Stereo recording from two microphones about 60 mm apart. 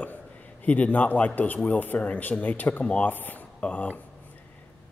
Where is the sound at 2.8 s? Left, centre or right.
Centre.